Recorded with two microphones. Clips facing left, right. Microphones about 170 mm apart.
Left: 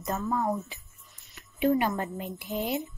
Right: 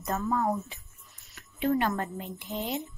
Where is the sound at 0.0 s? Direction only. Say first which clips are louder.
Right 1 dB; centre (ahead or behind).